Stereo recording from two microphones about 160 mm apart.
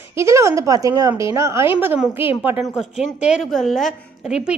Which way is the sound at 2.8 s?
Centre (ahead or behind).